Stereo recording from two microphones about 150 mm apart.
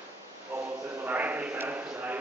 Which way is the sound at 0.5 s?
15° right (ahead or behind).